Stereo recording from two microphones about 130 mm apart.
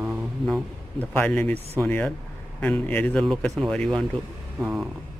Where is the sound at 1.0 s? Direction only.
10° left (ahead or behind).